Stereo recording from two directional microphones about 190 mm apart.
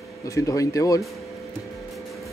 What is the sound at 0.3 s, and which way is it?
Speech, 15° left (ahead or behind).